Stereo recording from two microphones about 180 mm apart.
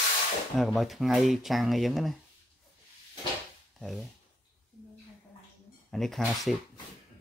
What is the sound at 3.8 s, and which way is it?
Speech, centre (ahead or behind).